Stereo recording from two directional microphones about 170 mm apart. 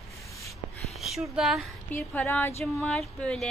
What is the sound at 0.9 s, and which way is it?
Speech, centre (ahead or behind).